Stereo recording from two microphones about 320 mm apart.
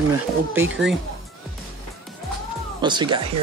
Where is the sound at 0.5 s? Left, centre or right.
Centre.